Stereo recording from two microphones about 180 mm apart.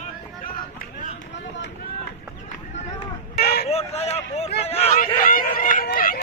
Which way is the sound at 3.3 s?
65° left (ahead or behind).